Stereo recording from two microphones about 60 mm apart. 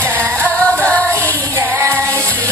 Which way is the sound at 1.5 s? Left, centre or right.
Right.